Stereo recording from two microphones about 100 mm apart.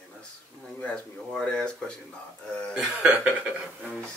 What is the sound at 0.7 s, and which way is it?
Speech, 15° left (ahead or behind).